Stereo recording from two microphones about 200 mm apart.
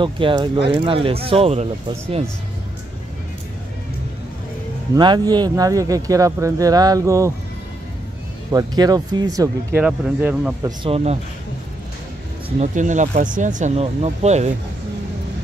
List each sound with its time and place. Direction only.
0.0 s speech: 25° right (ahead or behind)
4.9 s speech: 20° right (ahead or behind)
8.5 s speech: 20° right (ahead or behind)
9.8 s speech: 5° right (ahead or behind)
10.6 s speech: 25° right (ahead or behind)
12.4 s speech: 35° right (ahead or behind)